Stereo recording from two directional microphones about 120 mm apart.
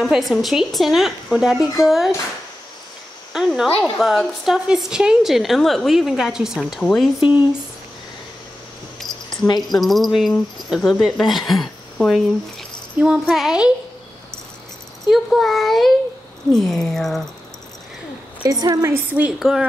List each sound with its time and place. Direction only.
0.0 s a woman's voice: centre (ahead or behind)
3.3 s a sound: 5° right (ahead or behind)
4.0 s a woman's voice: centre (ahead or behind)
9.0 s a sound: 5° left (ahead or behind)
9.6 s a woman's voice: centre (ahead or behind)
15.0 s a woman's voice: centre (ahead or behind)
18.4 s a woman's voice: 30° right (ahead or behind)
19.1 s a woman's voice: 5° right (ahead or behind)